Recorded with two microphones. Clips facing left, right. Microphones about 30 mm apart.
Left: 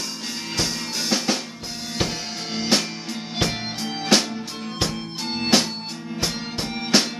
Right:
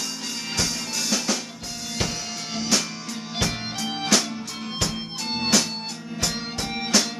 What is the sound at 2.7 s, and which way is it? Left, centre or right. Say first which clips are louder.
Music: left 3 dB; left.